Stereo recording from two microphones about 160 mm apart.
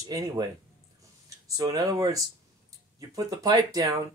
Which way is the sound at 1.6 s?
20° right (ahead or behind).